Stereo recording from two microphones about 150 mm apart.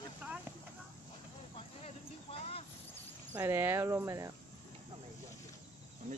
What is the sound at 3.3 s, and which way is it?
Speech, 15° right (ahead or behind).